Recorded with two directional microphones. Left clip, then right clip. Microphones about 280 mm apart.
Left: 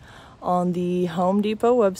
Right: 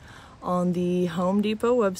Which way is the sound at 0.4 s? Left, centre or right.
Centre.